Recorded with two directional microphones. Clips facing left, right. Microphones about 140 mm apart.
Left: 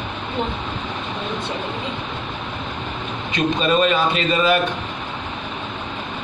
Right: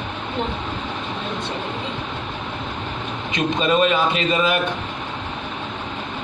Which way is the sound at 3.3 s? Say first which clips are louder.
Left 1 dB; 15° right (ahead or behind).